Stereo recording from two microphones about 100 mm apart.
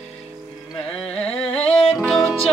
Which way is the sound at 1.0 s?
80° left.